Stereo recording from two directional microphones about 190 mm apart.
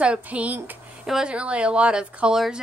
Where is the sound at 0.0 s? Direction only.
5° right (ahead or behind).